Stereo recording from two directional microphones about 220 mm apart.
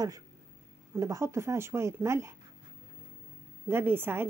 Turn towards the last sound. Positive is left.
turn(degrees=-10)  # may be behind; listen again after turning